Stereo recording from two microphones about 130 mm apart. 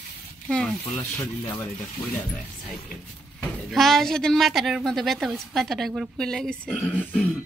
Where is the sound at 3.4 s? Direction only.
Centre (ahead or behind).